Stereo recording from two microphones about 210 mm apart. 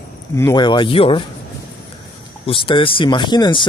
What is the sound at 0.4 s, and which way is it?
Speech, 15° left (ahead or behind).